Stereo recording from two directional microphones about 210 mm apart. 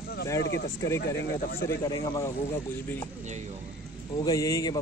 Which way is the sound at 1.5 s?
40° left (ahead or behind).